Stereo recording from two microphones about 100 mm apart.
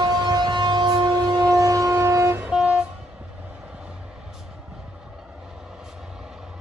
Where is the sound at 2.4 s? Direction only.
5° right (ahead or behind).